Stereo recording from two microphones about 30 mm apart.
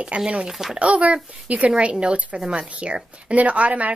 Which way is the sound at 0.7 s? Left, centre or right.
Right.